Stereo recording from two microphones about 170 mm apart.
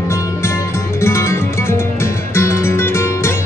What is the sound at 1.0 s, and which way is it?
Music, 15° left (ahead or behind).